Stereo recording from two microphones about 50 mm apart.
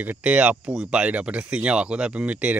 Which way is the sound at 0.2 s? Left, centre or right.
Right.